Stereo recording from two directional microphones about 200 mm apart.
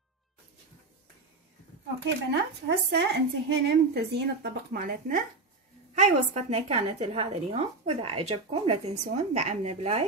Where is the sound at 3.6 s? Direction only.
55° right (ahead or behind).